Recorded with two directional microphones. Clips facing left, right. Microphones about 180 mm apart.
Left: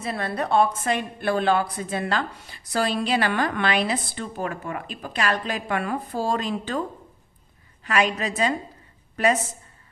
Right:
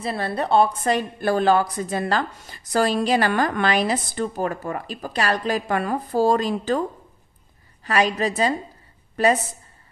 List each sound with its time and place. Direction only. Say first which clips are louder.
0.0 s a woman's voice: right 2 dB; 30° right (ahead or behind)
7.8 s a woman's voice: right 3 dB; 35° right (ahead or behind)